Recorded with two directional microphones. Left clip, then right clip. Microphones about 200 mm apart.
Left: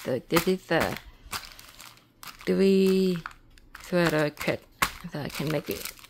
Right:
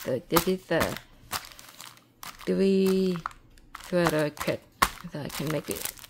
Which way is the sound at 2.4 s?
10° left (ahead or behind).